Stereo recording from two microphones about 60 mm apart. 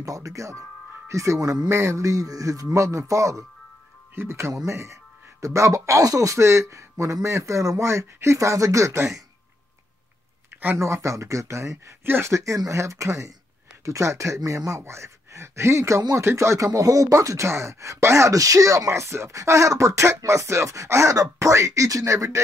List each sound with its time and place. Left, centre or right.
0.0 s speech: right
1.7 s speech: right
4.1 s speech: right
10.8 s speech: right
12.0 s speech: right
12.3 s speech: right